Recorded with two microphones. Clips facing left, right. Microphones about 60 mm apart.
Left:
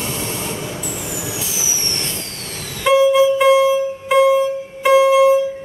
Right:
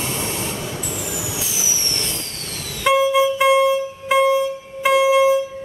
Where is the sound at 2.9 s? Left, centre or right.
Centre.